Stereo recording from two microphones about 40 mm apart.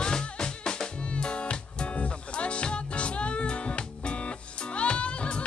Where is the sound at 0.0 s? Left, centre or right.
Left.